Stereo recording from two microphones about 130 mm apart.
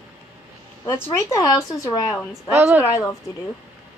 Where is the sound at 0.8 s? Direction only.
20° left (ahead or behind).